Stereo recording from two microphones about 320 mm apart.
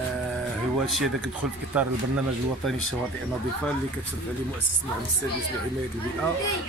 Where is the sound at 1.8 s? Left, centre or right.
Centre.